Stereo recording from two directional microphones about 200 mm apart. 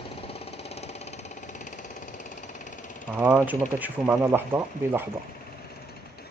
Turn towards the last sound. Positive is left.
turn(degrees=-10)  # may be behind; listen again after turning